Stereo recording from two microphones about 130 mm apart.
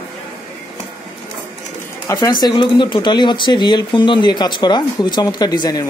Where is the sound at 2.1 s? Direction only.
20° left (ahead or behind).